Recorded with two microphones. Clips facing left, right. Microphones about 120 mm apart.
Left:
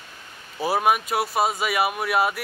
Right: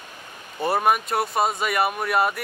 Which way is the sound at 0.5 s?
Centre (ahead or behind).